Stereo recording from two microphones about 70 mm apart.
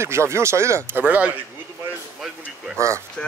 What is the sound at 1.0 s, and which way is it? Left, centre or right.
Speech, right.